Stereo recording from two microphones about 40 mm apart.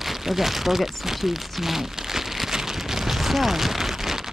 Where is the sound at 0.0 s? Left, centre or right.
Centre.